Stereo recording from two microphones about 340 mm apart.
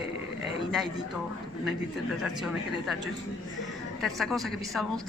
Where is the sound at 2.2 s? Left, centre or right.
Centre.